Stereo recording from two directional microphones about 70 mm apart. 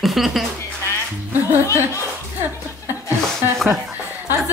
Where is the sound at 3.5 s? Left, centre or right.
Centre.